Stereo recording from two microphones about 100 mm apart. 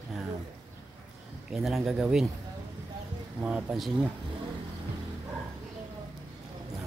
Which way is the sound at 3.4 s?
10° right (ahead or behind).